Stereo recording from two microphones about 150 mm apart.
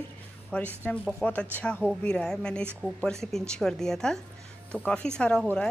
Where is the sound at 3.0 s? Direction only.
5° left (ahead or behind).